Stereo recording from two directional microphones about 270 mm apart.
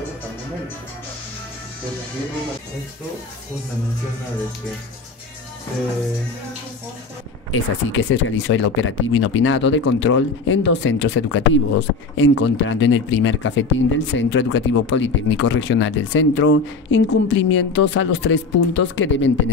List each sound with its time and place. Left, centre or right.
7.5 s speech: left